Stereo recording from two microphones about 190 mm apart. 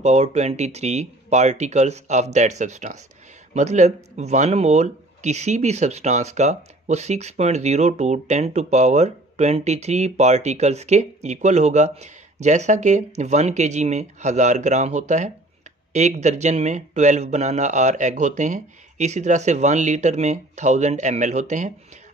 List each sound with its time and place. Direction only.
0.0 s speech: 35° right (ahead or behind)